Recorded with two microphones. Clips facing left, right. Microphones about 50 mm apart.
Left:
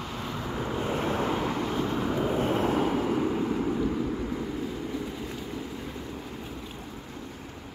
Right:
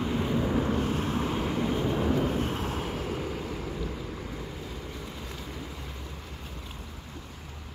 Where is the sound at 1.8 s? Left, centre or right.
Centre.